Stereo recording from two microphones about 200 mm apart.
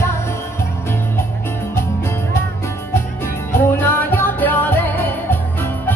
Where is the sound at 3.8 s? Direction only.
10° left (ahead or behind).